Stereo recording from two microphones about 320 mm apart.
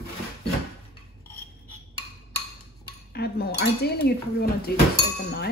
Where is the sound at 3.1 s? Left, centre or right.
Left.